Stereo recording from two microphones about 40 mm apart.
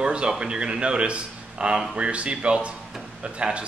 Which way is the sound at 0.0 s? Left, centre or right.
Right.